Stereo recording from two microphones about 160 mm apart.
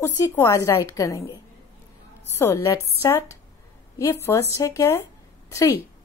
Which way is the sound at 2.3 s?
15° left (ahead or behind).